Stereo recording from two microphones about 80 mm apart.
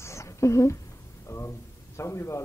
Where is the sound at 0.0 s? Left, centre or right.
Left.